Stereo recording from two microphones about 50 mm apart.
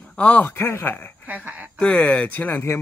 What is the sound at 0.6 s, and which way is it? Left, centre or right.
Speech, left.